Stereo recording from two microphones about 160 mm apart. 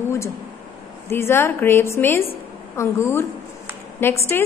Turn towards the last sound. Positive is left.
turn(degrees=15)  # may be behind; listen again after turning